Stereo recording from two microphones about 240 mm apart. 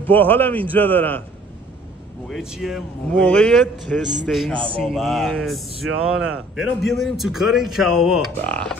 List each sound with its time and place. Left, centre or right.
0.0 s a man's voice: centre
2.2 s speech: centre
4.0 s a man's voice: right
4.3 s speech: centre